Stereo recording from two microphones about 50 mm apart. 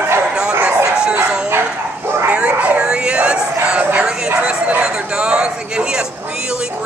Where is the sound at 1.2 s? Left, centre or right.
Centre.